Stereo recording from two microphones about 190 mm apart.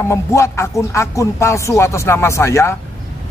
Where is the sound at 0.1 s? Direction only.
15° left (ahead or behind).